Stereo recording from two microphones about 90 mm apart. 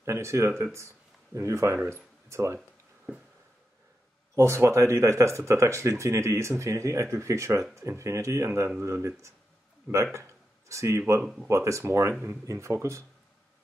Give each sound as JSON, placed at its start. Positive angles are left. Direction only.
{"t": 0.0, "sound": "speech", "side_deg": -30}
{"t": 4.4, "sound": "speech", "side_deg": -30}
{"t": 10.7, "sound": "speech", "side_deg": -35}